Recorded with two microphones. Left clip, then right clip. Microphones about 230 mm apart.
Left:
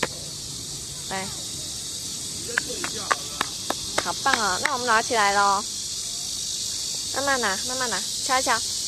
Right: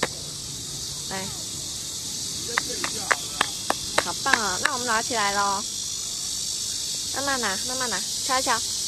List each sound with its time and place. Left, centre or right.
2.8 s cricket: centre
4.4 s speech: left
7.2 s speech: centre